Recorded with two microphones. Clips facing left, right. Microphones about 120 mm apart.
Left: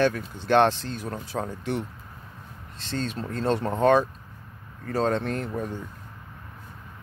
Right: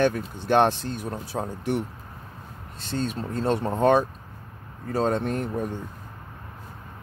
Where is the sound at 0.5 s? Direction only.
10° right (ahead or behind).